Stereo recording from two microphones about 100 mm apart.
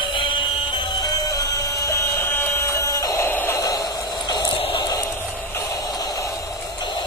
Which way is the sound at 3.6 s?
40° left (ahead or behind).